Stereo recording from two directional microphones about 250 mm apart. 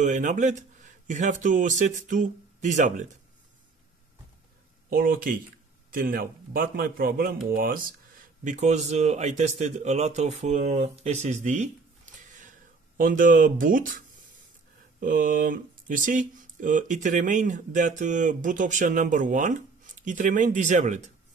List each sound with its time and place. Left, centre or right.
0.0 s speech: right
4.8 s speech: right